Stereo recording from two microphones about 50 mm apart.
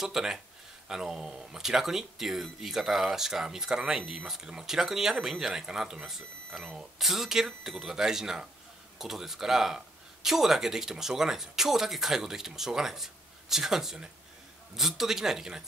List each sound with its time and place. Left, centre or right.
0.0 s speech: centre